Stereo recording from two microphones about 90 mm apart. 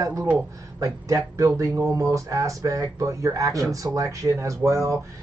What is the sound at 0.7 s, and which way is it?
Speech, 40° right (ahead or behind).